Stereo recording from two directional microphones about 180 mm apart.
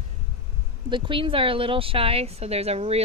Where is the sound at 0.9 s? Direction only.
30° right (ahead or behind).